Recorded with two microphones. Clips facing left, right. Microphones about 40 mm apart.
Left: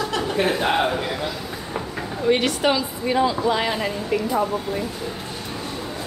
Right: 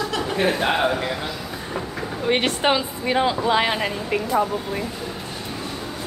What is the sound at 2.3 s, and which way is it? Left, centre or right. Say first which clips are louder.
Speech: even; right.